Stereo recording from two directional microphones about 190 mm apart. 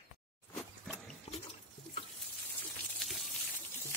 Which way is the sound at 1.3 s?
35° left (ahead or behind).